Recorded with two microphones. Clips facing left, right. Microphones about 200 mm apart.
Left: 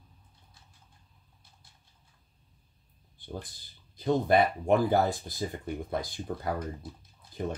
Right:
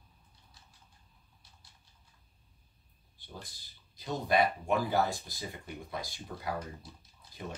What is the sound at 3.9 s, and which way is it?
Speech, 50° left (ahead or behind).